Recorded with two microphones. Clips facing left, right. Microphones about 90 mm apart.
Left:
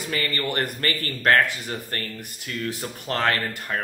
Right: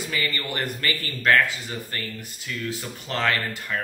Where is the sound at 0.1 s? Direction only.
45° left (ahead or behind).